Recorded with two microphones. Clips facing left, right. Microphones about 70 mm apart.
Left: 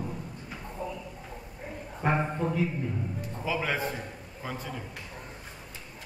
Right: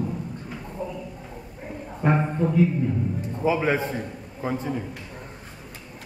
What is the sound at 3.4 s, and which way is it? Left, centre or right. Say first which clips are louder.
A man's voice: right 7 dB; right.